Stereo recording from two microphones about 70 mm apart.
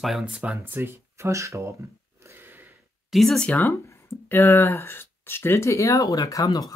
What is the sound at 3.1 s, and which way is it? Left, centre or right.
Speech, centre.